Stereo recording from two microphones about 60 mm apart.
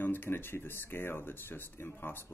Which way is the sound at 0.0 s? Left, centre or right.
Left.